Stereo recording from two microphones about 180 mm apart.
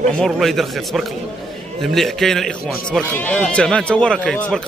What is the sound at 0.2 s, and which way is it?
Speech, centre (ahead or behind).